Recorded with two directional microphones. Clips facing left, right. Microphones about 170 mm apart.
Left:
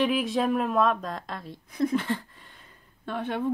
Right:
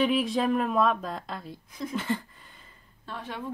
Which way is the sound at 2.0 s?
Centre (ahead or behind).